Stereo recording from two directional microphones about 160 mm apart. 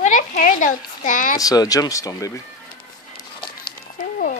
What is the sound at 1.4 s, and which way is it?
Speech, 20° left (ahead or behind).